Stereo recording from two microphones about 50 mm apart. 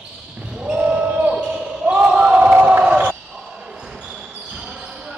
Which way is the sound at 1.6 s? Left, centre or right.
Right.